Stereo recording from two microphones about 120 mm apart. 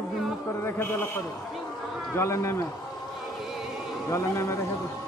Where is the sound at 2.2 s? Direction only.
25° left (ahead or behind).